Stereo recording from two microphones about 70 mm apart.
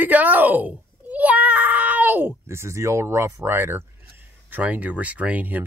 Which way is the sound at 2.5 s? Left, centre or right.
Right.